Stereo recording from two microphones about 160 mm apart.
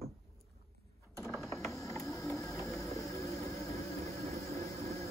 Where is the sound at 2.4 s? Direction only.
20° left (ahead or behind).